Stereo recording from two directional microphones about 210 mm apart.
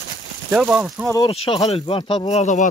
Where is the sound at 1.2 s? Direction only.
25° left (ahead or behind).